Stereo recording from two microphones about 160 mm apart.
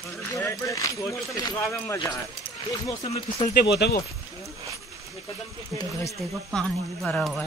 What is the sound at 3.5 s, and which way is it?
Speech, 80° left.